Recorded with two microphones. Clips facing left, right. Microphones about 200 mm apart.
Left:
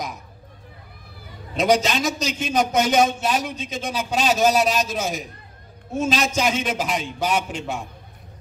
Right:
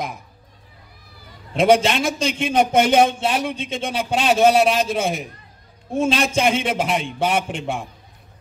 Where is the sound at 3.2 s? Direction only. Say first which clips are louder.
Right 2 dB; 30° right (ahead or behind).